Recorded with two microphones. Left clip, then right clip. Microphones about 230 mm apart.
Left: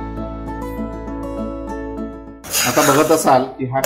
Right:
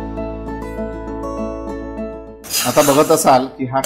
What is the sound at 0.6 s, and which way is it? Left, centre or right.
Music, left.